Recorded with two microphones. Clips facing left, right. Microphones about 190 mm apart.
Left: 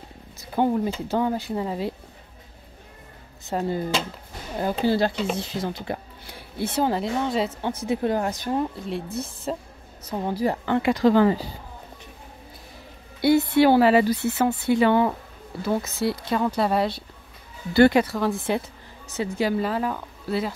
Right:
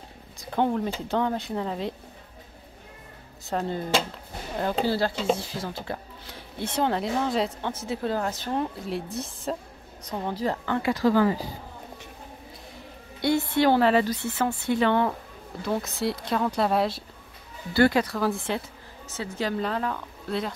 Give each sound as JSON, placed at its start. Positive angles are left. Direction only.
{"t": 0.7, "sound": "speech", "side_deg": 10}
{"t": 3.4, "sound": "speech", "side_deg": 5}
{"t": 4.8, "sound": "speech", "side_deg": 20}
{"t": 7.6, "sound": "speech", "side_deg": 15}
{"t": 8.5, "sound": "speech", "side_deg": 0}
{"t": 13.2, "sound": "speech", "side_deg": 5}
{"t": 17.7, "sound": "speech", "side_deg": 20}
{"t": 18.0, "sound": "speech", "side_deg": 0}
{"t": 19.1, "sound": "speech", "side_deg": 10}